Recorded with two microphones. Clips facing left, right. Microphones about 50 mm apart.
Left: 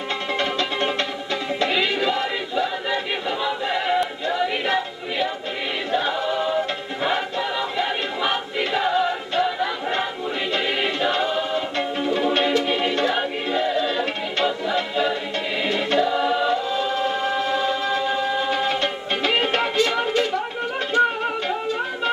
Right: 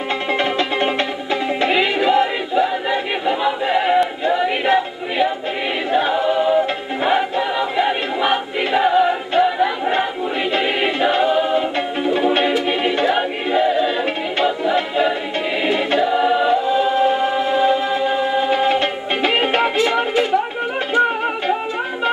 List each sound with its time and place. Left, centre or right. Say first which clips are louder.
0.3 s music: right 5 dB; centre
4.2 s a capella: right 5 dB; centre
5.9 s music: right 6 dB; right
15.6 s choir: right 3 dB; centre
20.9 s music: right 2 dB; centre